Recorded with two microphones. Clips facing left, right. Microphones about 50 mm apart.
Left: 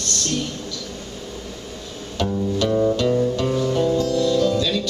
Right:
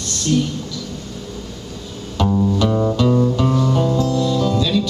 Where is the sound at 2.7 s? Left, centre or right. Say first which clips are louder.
Right 1 dB; centre.